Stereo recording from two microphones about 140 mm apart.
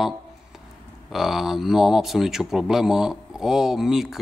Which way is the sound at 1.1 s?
Centre (ahead or behind).